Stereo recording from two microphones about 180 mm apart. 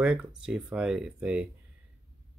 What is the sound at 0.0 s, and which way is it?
Speech, 5° right (ahead or behind).